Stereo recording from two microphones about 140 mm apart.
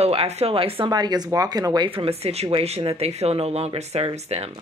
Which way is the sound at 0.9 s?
30° right (ahead or behind).